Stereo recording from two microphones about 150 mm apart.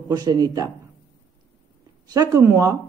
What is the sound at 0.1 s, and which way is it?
Speech, 25° right (ahead or behind).